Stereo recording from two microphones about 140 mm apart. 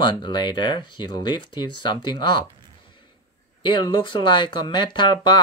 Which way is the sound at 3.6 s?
35° left (ahead or behind).